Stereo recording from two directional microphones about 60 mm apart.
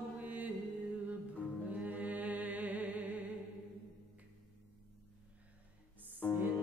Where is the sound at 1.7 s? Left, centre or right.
Right.